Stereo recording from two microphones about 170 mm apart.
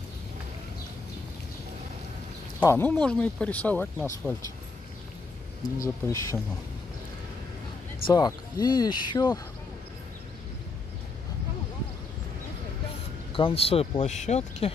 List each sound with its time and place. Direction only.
2.6 s speech: 15° left (ahead or behind)
5.8 s speech: 20° left (ahead or behind)
8.1 s speech: 20° left (ahead or behind)
13.3 s speech: 30° left (ahead or behind)